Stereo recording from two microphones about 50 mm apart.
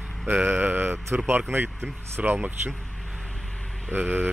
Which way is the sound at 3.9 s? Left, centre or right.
Right.